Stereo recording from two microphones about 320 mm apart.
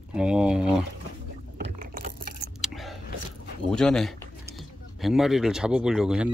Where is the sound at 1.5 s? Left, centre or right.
Right.